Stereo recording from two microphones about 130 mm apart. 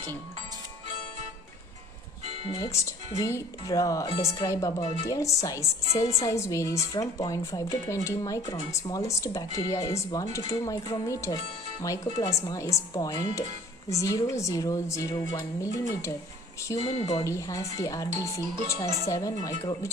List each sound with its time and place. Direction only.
2.2 s music: 55° right (ahead or behind)
2.5 s speech: 25° left (ahead or behind)